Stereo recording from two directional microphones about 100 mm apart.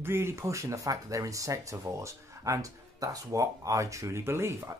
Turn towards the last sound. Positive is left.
turn(degrees=-25)  # may be behind; listen again after turning